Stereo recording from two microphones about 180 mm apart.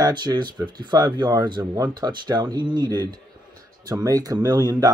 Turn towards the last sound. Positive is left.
turn(degrees=-20)  # may be behind; listen again after turning